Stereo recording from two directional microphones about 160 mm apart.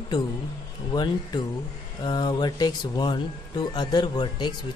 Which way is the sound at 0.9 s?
25° left (ahead or behind).